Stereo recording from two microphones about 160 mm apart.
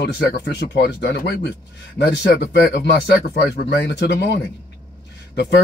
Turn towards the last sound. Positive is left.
turn(degrees=90)